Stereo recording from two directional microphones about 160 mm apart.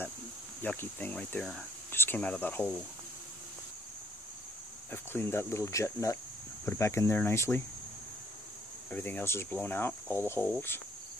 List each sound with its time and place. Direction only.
0.6 s speech: 10° left (ahead or behind)
4.9 s speech: 15° left (ahead or behind)
8.9 s speech: 10° left (ahead or behind)